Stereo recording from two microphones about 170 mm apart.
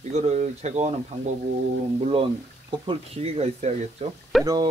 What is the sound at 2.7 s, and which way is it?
Speech, 35° right (ahead or behind).